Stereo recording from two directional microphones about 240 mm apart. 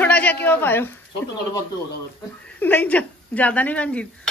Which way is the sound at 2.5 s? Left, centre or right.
Centre.